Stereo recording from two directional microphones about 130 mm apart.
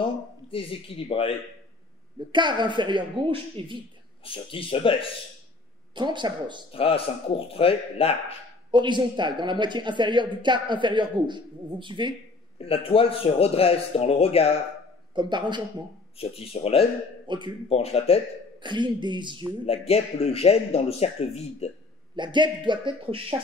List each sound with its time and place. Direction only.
0.0 s speech: 45° left (ahead or behind)
2.3 s a woman's voice: 35° right (ahead or behind)
4.2 s speech: 45° left (ahead or behind)
5.9 s a woman's voice: 35° right (ahead or behind)
6.7 s speech: 45° left (ahead or behind)
8.7 s a woman's voice: 35° right (ahead or behind)
12.5 s speech: 45° left (ahead or behind)
15.1 s a woman's voice: 35° right (ahead or behind)
16.2 s speech: 50° left (ahead or behind)
17.3 s a woman's voice: 35° right (ahead or behind)
17.6 s speech: 50° left (ahead or behind)
18.6 s a woman's voice: 35° right (ahead or behind)
19.6 s speech: 50° left (ahead or behind)
22.1 s a woman's voice: 35° right (ahead or behind)